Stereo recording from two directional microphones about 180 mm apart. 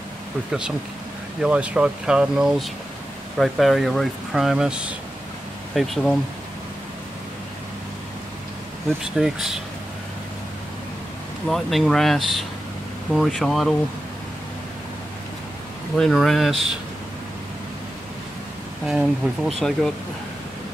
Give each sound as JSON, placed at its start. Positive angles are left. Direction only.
{"t": 0.5, "sound": "speech", "side_deg": -5}
{"t": 9.2, "sound": "speech", "side_deg": 0}
{"t": 11.4, "sound": "speech", "side_deg": 0}
{"t": 16.0, "sound": "speech", "side_deg": 0}
{"t": 18.9, "sound": "speech", "side_deg": 0}